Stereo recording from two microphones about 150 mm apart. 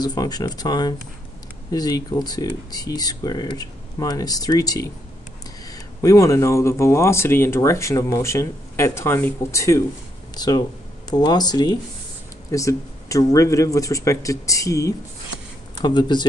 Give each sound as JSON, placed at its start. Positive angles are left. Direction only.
{"t": 0.0, "sound": "speech", "side_deg": 25}